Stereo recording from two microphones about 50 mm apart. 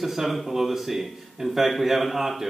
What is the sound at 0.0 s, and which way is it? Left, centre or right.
Speech, centre.